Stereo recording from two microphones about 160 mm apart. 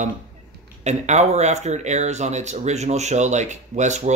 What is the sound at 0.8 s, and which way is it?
Speech, 45° right (ahead or behind).